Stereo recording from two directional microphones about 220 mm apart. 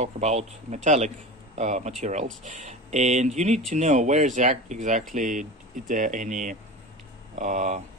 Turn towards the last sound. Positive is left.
turn(degrees=-35)  # may be behind; listen again after turning